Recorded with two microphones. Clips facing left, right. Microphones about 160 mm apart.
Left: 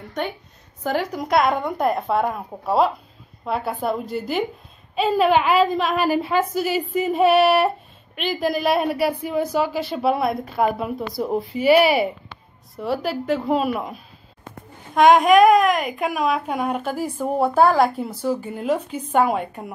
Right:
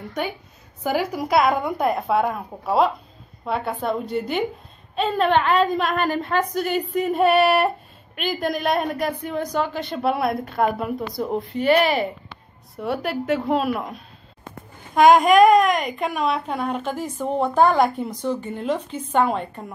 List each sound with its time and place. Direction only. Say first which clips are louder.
0.8 s a woman's voice: right 1 dB; 5° right (ahead or behind); by 19.7 s 10° left (ahead or behind)